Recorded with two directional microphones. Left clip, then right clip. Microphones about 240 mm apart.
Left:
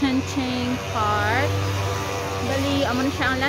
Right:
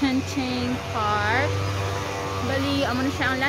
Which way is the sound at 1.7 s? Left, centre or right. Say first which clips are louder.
Left 2 dB; left.